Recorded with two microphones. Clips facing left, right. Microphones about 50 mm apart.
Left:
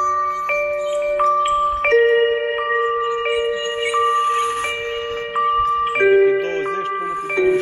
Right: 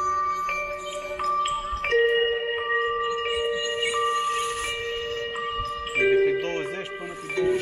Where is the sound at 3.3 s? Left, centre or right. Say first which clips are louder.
Left 6 dB; left.